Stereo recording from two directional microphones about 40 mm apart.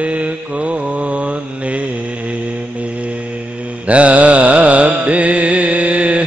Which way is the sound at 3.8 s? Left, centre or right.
Right.